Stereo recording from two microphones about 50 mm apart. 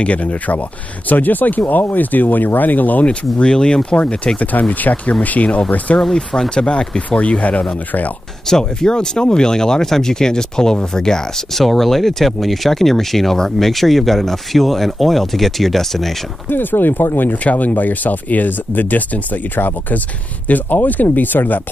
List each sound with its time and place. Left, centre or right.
0.0 s speech: left
3.1 s speech: centre
8.5 s speech: centre
16.4 s speech: left
17.4 s speech: left